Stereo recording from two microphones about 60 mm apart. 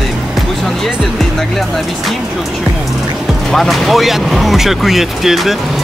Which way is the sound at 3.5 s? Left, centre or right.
Centre.